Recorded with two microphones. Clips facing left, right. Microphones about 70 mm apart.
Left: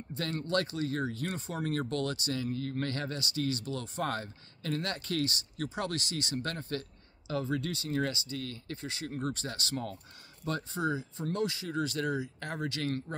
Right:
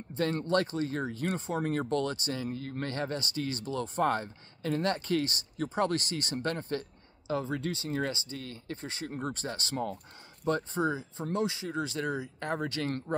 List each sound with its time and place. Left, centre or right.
0.1 s speech: right